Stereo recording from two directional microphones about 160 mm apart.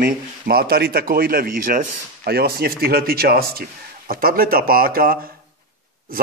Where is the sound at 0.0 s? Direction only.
75° right (ahead or behind).